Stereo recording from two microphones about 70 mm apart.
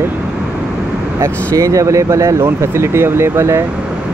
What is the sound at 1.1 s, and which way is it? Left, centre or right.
Speech, right.